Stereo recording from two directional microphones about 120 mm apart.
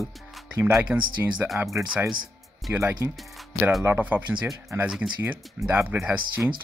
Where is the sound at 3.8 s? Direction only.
15° right (ahead or behind).